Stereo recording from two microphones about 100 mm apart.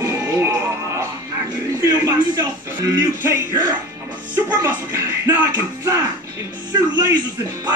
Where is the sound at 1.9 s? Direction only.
20° right (ahead or behind).